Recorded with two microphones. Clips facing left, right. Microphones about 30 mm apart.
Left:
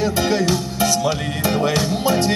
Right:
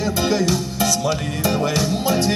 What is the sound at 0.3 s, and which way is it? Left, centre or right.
Music, left.